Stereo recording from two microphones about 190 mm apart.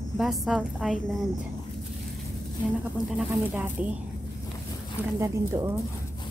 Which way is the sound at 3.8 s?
5° right (ahead or behind).